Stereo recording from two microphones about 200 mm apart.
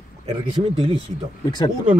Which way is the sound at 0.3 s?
25° right (ahead or behind).